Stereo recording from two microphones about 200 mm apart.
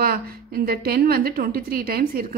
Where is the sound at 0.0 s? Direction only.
50° right (ahead or behind).